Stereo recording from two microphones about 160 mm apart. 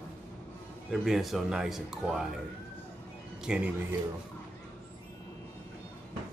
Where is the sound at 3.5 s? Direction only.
5° right (ahead or behind).